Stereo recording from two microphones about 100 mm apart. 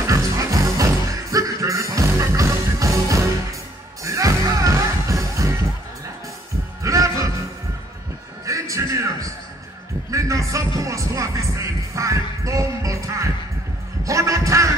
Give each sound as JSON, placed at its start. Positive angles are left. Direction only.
{"t": 0.0, "sound": "music", "side_deg": -35}
{"t": 6.8, "sound": "music", "side_deg": -30}
{"t": 8.5, "sound": "music", "side_deg": -30}
{"t": 14.0, "sound": "a sound", "side_deg": -30}